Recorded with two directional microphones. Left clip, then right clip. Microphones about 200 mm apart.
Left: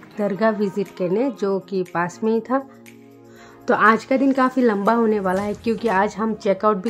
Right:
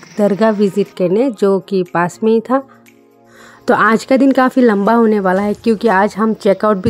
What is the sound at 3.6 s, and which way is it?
Speech, 40° right (ahead or behind).